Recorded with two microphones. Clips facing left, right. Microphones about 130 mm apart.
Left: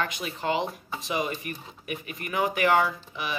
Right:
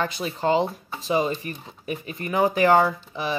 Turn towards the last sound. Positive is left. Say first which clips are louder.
# right 5 dB
turn(degrees=-30)  # may be behind; listen again after turning